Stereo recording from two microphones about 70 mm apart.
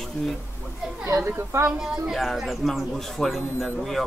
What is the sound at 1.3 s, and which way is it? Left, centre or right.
Speech, right.